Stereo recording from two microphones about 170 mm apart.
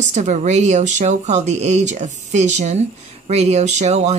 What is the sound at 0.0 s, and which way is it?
A woman's voice, 45° right (ahead or behind).